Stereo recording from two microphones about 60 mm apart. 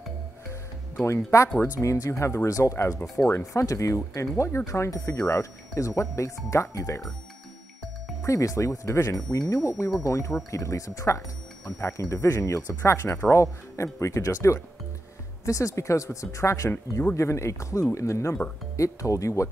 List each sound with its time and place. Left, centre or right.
1.0 s speech: left
3.6 s speech: left
8.2 s speech: left
18.8 s speech: left